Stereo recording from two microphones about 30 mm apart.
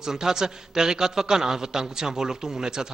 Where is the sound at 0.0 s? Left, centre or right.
Centre.